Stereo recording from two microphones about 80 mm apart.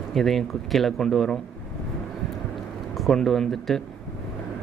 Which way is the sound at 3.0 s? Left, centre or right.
Centre.